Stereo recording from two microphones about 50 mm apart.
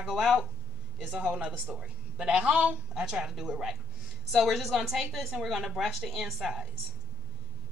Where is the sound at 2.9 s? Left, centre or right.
Centre.